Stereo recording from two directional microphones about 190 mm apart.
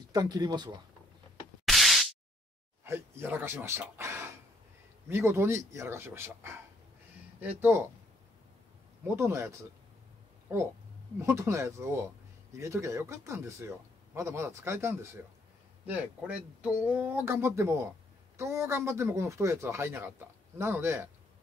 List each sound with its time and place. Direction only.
0.1 s speech: 20° right (ahead or behind)
1.7 s a sound: centre (ahead or behind)
2.8 s speech: 10° right (ahead or behind)
9.0 s speech: 15° right (ahead or behind)
10.5 s speech: 15° right (ahead or behind)